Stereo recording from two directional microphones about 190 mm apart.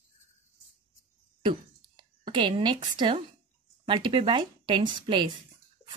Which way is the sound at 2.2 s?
25° right (ahead or behind).